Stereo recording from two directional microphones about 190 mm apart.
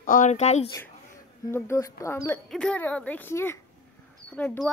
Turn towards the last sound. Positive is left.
turn(degrees=10)  # may be behind; listen again after turning